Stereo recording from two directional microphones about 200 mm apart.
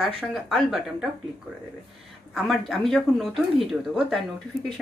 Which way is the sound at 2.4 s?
Centre (ahead or behind).